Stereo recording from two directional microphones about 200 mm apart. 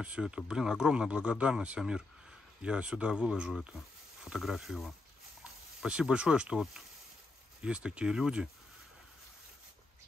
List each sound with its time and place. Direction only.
0.0 s speech: 5° right (ahead or behind)